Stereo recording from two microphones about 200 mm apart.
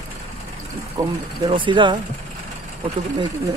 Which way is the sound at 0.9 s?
20° right (ahead or behind).